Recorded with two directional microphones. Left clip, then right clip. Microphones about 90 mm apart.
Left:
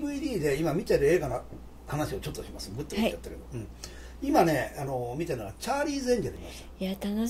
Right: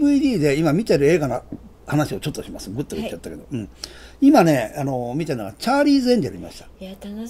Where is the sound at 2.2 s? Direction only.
45° right (ahead or behind).